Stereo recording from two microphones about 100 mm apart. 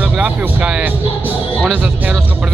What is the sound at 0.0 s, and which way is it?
Speech, 10° right (ahead or behind).